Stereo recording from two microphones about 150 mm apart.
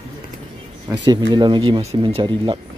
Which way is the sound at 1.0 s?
30° right (ahead or behind).